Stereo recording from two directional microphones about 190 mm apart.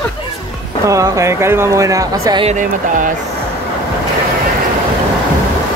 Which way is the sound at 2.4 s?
40° right (ahead or behind).